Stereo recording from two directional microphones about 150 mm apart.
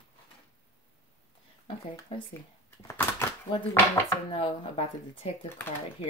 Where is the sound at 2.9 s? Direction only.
15° left (ahead or behind).